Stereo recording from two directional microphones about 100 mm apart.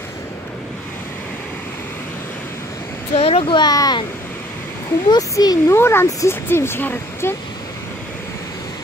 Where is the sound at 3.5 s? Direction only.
45° left (ahead or behind).